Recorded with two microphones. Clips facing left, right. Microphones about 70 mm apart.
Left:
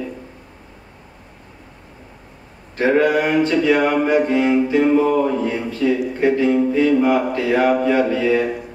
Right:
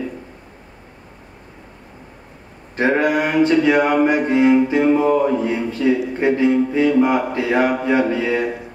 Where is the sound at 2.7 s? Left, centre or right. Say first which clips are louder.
Left 1 dB; centre.